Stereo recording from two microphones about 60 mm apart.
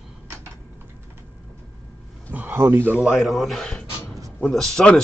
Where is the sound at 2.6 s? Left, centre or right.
Right.